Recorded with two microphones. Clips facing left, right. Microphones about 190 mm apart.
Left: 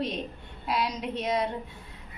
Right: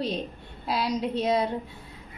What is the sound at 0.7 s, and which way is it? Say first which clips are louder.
Speech: right 3 dB; 30° right (ahead or behind).